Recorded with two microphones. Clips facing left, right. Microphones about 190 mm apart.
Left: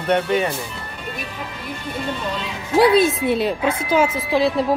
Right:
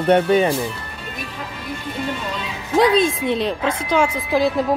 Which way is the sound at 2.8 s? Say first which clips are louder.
Left 2 dB; 5° left (ahead or behind).